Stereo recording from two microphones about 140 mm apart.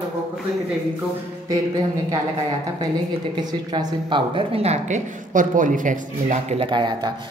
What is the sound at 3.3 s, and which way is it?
A woman's voice, 30° right (ahead or behind).